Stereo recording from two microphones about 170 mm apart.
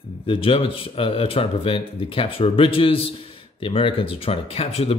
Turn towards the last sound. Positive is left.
turn(degrees=35)  # may be behind; listen again after turning